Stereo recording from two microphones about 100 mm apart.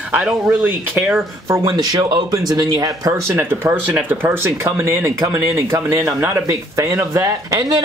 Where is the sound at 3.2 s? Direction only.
25° right (ahead or behind).